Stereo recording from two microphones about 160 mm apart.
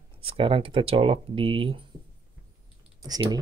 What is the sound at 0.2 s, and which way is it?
Speech, 35° right (ahead or behind).